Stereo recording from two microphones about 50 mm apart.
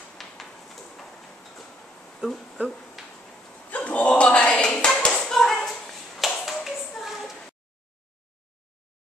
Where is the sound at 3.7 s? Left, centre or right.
Left.